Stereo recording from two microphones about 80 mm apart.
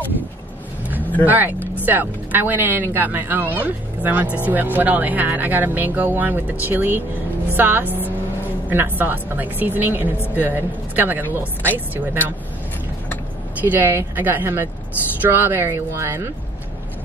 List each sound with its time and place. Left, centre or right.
1.2 s speech: right
13.6 s speech: right